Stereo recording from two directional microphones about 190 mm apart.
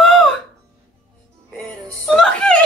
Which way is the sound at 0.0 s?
Centre (ahead or behind).